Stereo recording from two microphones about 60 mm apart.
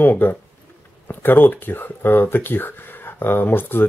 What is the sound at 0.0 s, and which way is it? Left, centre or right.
Speech, left.